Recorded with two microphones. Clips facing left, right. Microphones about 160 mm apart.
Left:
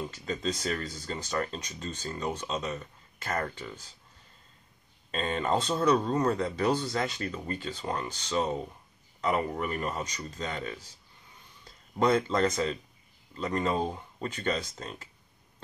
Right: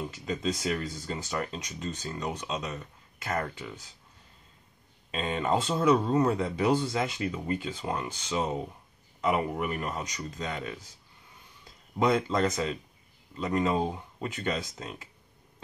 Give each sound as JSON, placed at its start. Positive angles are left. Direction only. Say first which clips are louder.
{"t": 0.0, "sound": "speech", "louder": "right 1 dB", "side_deg": -5}
{"t": 5.1, "sound": "speech", "louder": "even", "side_deg": -5}